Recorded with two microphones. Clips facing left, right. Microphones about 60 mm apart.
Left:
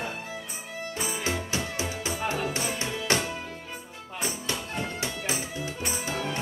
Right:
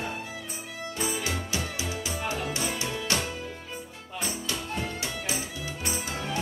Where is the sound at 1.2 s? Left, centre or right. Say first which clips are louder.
Left 2 dB; left.